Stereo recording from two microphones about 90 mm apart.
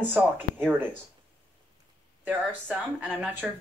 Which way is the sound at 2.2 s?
20° right (ahead or behind).